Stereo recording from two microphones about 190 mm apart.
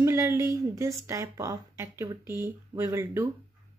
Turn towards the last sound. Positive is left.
turn(degrees=-15)  # may be behind; listen again after turning